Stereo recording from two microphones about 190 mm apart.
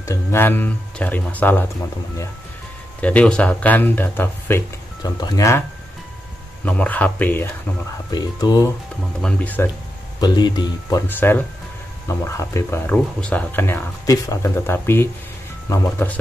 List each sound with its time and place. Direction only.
0.0 s speech: 15° left (ahead or behind)
3.0 s speech: 5° left (ahead or behind)
6.6 s speech: 10° left (ahead or behind)
8.1 s speech: 20° left (ahead or behind)
9.2 s speech: 10° left (ahead or behind)
10.2 s speech: 20° left (ahead or behind)